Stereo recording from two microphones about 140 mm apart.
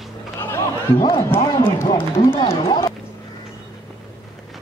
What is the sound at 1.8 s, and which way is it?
Speech, 20° left (ahead or behind).